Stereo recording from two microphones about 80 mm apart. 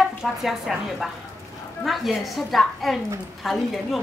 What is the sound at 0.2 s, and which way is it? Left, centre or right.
Speech, centre.